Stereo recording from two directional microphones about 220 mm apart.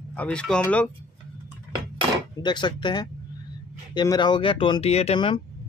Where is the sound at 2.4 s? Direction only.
20° left (ahead or behind).